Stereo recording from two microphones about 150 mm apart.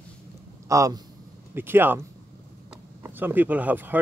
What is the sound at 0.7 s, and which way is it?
A man's voice, 20° right (ahead or behind).